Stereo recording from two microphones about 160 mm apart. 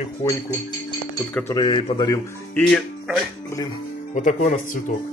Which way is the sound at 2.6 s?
5° right (ahead or behind).